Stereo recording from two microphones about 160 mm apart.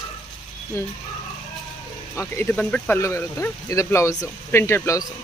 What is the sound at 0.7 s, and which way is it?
Speech, 20° left (ahead or behind).